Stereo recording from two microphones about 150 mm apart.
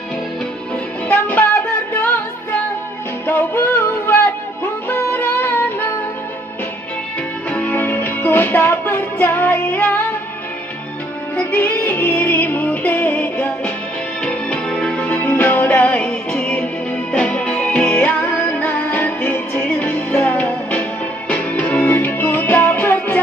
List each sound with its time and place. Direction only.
1.0 s music: 10° left (ahead or behind)
3.3 s music: 15° left (ahead or behind)
7.5 s music: 10° left (ahead or behind)
11.3 s music: 10° left (ahead or behind)